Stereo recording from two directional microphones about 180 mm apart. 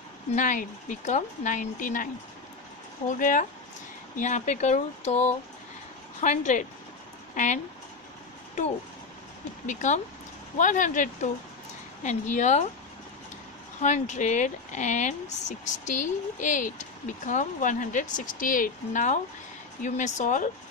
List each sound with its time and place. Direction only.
0.4 s speech: 45° left (ahead or behind)
3.1 s speech: 45° left (ahead or behind)
6.2 s speech: 40° left (ahead or behind)
9.7 s speech: 40° left (ahead or behind)
13.7 s speech: 40° left (ahead or behind)